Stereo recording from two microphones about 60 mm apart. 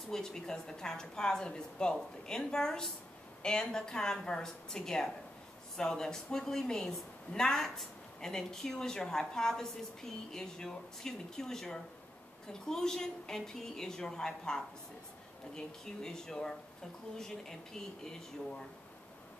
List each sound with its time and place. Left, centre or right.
0.1 s a woman's voice: centre